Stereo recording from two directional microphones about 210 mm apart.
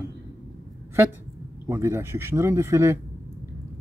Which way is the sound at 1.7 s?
10° right (ahead or behind).